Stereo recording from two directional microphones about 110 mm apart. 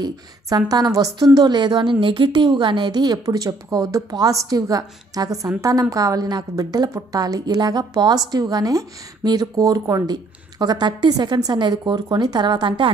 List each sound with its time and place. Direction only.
0.0 s a woman's voice: 35° right (ahead or behind)